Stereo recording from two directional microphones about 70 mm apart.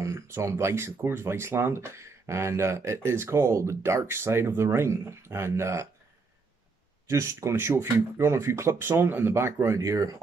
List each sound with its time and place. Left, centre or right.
0.0 s speech: right
7.1 s speech: right